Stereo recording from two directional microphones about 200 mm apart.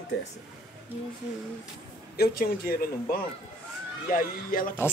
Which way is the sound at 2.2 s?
50° left (ahead or behind).